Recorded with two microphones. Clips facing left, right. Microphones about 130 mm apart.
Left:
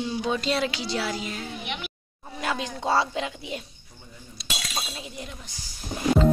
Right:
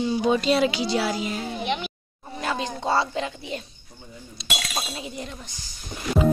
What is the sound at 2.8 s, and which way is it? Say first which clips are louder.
Speech: even; 5° left (ahead or behind).